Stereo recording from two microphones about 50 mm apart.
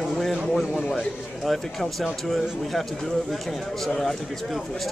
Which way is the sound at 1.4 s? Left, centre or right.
Centre.